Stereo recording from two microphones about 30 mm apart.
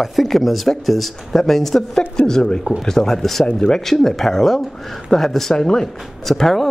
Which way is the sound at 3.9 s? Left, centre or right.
Centre.